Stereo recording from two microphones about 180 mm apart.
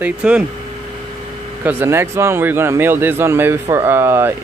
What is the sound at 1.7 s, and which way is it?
Speech, 15° right (ahead or behind).